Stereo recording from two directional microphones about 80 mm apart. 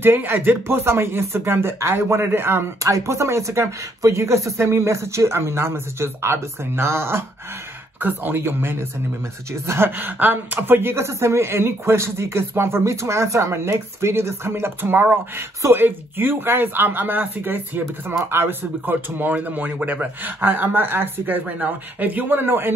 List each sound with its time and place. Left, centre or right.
0.0 s speech: right